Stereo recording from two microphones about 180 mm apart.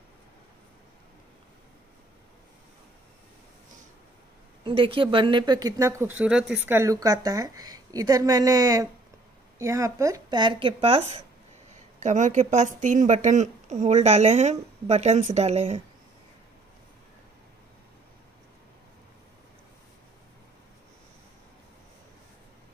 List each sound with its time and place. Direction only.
4.6 s speech: 30° right (ahead or behind)